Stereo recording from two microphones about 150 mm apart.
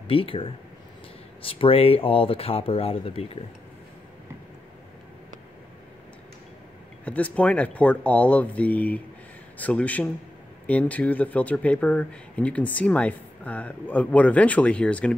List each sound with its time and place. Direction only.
0.1 s speech: 35° left (ahead or behind)
7.1 s speech: 10° left (ahead or behind)